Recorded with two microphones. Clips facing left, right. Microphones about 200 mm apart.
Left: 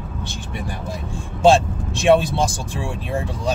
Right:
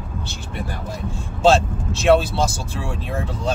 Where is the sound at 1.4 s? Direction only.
15° left (ahead or behind).